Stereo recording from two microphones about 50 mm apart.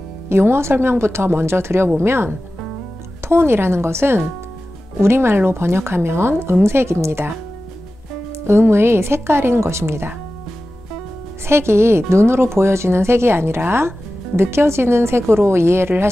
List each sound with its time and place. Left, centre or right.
0.3 s speech: right
8.5 s speech: right
11.4 s speech: right